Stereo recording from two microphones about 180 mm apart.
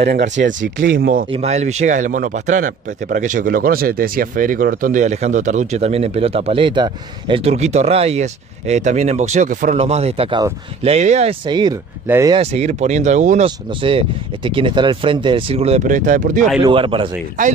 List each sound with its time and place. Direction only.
0.0 s speech: 70° right (ahead or behind)
0.9 s speech: 50° right (ahead or behind)
1.3 s a man's voice: 35° right (ahead or behind)
11.4 s speech: 25° right (ahead or behind)
12.4 s a man's voice: 35° right (ahead or behind)
13.7 s speech: 30° right (ahead or behind); by 16.4 s 45° right (ahead or behind)
16.6 s speech: 30° right (ahead or behind)
17.4 s speech: 45° right (ahead or behind)